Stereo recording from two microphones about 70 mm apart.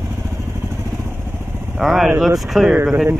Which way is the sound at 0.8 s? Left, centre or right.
Right.